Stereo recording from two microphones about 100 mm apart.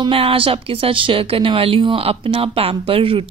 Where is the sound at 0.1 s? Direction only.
65° right (ahead or behind).